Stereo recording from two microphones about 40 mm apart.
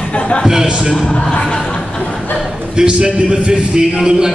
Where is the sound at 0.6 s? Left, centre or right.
Right.